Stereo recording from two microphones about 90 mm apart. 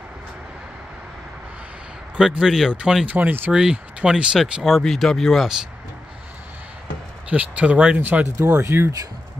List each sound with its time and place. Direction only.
2.1 s speech: 5° right (ahead or behind)
3.1 s speech: 20° right (ahead or behind)
3.5 s speech: 5° right (ahead or behind)
7.2 s speech: 15° right (ahead or behind)
8.5 s speech: 30° right (ahead or behind)